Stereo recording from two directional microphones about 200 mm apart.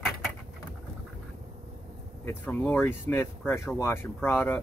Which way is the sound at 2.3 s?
10° left (ahead or behind).